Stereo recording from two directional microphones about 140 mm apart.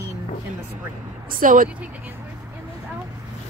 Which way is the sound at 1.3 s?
75° right (ahead or behind).